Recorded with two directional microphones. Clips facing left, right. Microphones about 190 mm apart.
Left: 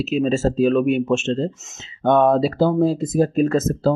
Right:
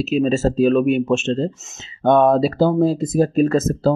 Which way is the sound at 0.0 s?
40° right (ahead or behind).